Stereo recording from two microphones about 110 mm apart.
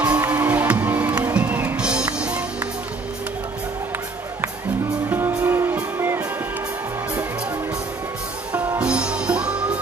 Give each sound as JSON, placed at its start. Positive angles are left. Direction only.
{"t": 0.0, "sound": "music", "side_deg": -10}
{"t": 5.3, "sound": "music", "side_deg": -20}
{"t": 8.7, "sound": "music", "side_deg": -10}